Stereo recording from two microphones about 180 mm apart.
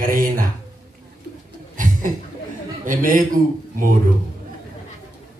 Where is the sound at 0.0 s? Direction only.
50° right (ahead or behind).